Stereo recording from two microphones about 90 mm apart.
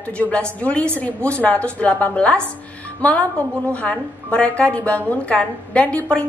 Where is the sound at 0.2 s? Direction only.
15° left (ahead or behind).